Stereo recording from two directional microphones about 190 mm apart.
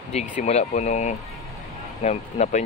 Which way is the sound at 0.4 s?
35° left (ahead or behind).